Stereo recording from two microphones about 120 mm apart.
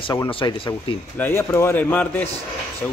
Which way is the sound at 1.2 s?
20° left (ahead or behind).